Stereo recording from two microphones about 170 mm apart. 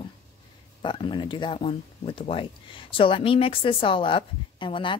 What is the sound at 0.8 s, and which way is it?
Speech, 30° left (ahead or behind).